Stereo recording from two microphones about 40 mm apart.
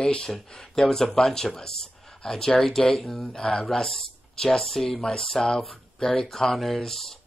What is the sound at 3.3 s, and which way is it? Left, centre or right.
Speech, centre.